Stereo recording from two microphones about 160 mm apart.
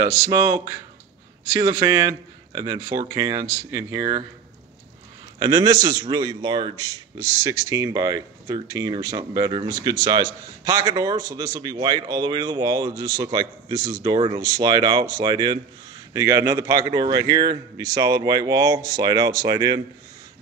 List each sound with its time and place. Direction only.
0.3 s a man's voice: 20° right (ahead or behind)
5.4 s a man's voice: 25° right (ahead or behind)